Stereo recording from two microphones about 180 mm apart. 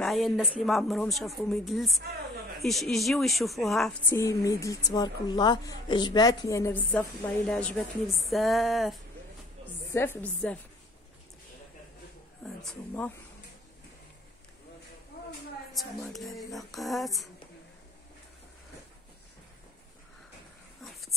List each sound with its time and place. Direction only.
0.0 s speech: centre (ahead or behind)
4.1 s a woman's voice: 15° left (ahead or behind)
6.9 s speech: 5° left (ahead or behind)
9.9 s a woman's voice: 10° left (ahead or behind)
12.4 s speech: 5° left (ahead or behind)
15.8 s speech: centre (ahead or behind)